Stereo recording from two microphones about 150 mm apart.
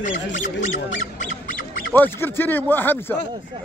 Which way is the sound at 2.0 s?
15° left (ahead or behind).